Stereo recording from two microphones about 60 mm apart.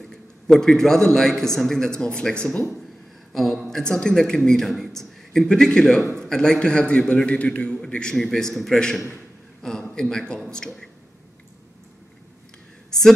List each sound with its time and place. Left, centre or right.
0.0 s a man's voice: centre
3.3 s a man's voice: centre